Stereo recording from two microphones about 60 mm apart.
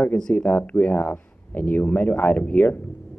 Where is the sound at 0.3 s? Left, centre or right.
Left.